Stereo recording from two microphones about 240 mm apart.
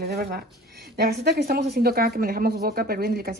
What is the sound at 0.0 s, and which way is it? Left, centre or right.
Speech, right.